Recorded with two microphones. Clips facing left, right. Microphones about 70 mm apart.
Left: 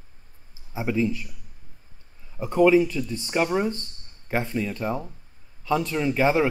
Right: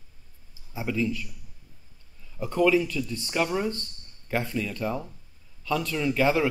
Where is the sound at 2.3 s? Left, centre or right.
Left.